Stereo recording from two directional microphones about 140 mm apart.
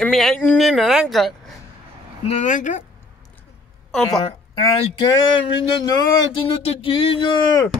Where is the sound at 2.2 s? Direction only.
60° left (ahead or behind).